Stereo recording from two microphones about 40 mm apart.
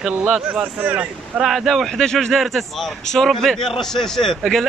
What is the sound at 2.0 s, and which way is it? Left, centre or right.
Speech, centre.